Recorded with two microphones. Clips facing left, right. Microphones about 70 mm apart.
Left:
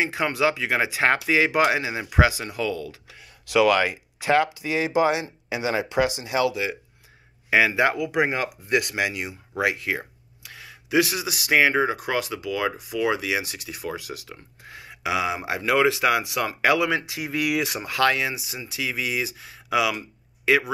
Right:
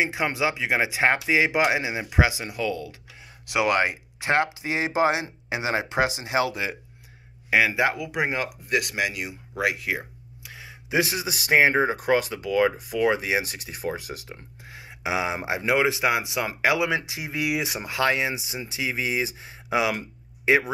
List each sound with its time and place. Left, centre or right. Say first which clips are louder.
0.0 s speech: left 2 dB; centre
3.5 s a man's voice: left 3 dB; right
7.4 s a man's voice: left 2 dB; centre; by 14.4 s right
14.7 s speech: left 1 dB; centre